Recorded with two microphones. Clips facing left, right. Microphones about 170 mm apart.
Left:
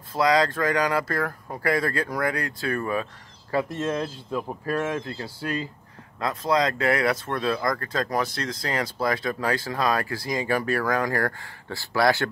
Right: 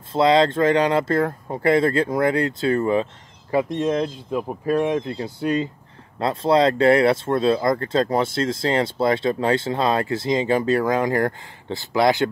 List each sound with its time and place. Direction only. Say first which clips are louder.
0.1 s speech: right 5 dB; 25° right (ahead or behind)